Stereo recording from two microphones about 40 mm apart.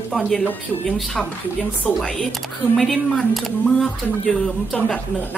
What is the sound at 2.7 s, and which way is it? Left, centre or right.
Speech, centre.